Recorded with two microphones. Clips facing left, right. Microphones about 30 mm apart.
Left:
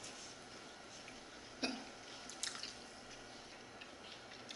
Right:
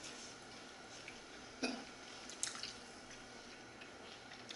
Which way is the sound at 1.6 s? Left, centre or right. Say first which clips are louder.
Even; left.